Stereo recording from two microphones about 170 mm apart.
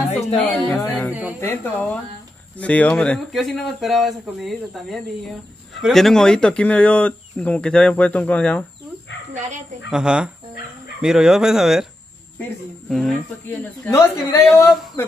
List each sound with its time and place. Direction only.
0.4 s a sound: 10° left (ahead or behind)
1.4 s speech: 15° left (ahead or behind)
9.8 s speech: 5° right (ahead or behind)
12.9 s speech: centre (ahead or behind)
13.5 s speech: 15° left (ahead or behind)